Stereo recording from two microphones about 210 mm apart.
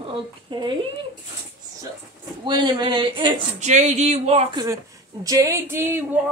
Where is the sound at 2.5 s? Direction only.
20° right (ahead or behind).